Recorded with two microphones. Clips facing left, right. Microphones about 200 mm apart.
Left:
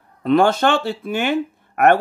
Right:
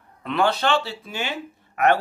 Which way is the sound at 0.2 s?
45° left (ahead or behind).